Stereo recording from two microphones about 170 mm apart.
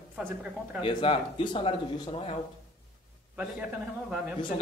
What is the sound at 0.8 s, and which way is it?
Speech, 30° left (ahead or behind).